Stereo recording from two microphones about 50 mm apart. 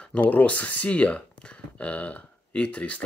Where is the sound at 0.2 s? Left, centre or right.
Left.